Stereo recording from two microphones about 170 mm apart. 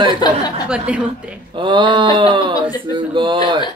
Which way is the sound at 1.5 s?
30° right (ahead or behind).